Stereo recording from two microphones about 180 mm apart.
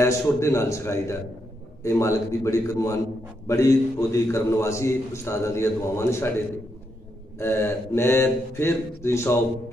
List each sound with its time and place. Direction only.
0.0 s a man's voice: 15° left (ahead or behind)
7.3 s a man's voice: 10° left (ahead or behind)